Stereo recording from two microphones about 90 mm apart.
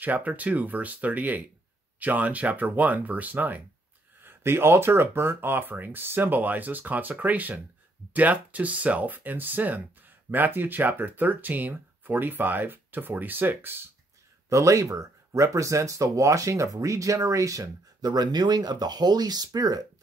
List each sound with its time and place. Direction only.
0.0 s speech: 15° right (ahead or behind)
14.5 s speech: 35° right (ahead or behind)